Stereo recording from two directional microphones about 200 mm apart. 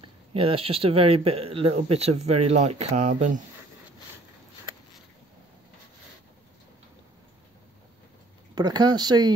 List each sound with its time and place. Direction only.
0.3 s speech: 30° right (ahead or behind)
8.5 s speech: 20° right (ahead or behind)